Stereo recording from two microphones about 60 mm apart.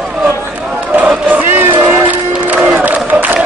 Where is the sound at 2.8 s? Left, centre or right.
Right.